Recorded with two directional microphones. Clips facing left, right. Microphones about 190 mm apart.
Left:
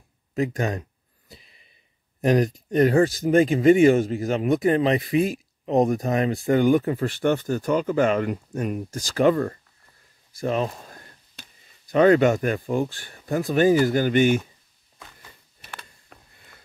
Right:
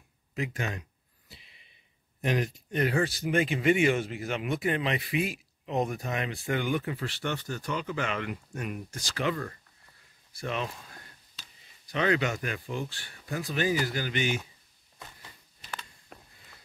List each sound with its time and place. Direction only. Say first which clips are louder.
0.3 s speech: left 9 dB; 40° left (ahead or behind)
1.3 s a sound: left 6 dB; 40° left (ahead or behind)
2.2 s speech: left 9 dB; 40° left (ahead or behind)
11.4 s a sound: left 6 dB; 55° left (ahead or behind)
11.9 s speech: left 11 dB; 45° left (ahead or behind)
16.1 s sniff: right 2 dB; 5° right (ahead or behind)